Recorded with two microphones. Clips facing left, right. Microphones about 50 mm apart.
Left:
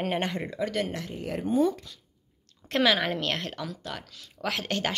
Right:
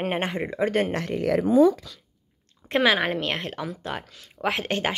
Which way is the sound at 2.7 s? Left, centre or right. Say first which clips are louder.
Right 3 dB; right.